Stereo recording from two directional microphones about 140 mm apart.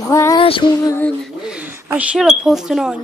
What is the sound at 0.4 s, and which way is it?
Music, 40° left (ahead or behind).